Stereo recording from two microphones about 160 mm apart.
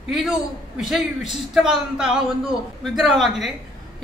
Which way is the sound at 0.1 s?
Centre (ahead or behind).